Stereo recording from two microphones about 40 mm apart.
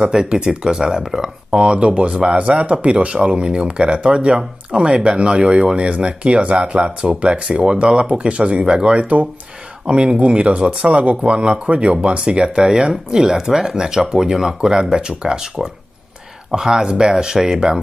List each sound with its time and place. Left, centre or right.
0.0 s speech: right
1.5 s speech: right